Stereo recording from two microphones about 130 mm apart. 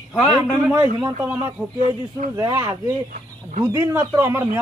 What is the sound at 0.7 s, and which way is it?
Speech, 15° right (ahead or behind).